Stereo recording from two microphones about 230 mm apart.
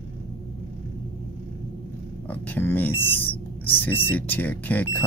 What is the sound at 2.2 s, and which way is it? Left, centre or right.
Speech, centre.